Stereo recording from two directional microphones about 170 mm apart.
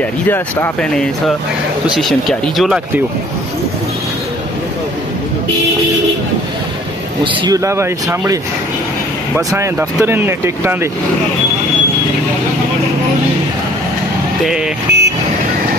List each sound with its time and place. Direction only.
0.3 s speech: 10° left (ahead or behind)
2.0 s speech: centre (ahead or behind)
7.4 s speech: 20° right (ahead or behind)
9.5 s speech: 15° right (ahead or behind)
14.9 s vehicle: 75° right (ahead or behind)